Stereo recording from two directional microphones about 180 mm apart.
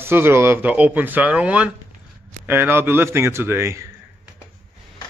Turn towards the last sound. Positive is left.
turn(degrees=-15)  # may be behind; listen again after turning